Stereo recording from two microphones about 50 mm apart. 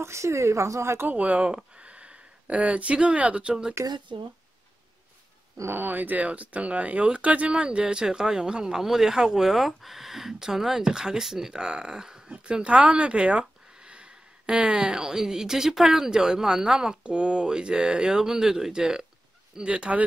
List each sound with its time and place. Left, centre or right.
0.0 s a woman's voice: right
1.0 s speech: right
3.8 s speech: right
5.7 s speech: right